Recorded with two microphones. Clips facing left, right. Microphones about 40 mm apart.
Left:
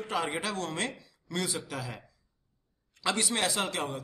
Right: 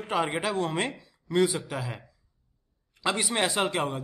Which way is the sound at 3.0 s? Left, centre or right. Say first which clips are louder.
Right 3 dB; centre.